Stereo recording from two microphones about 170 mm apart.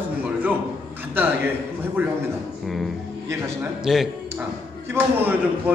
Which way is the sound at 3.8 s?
5° right (ahead or behind).